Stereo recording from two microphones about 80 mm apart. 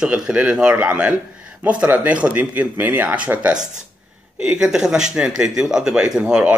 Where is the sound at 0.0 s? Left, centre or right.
Centre.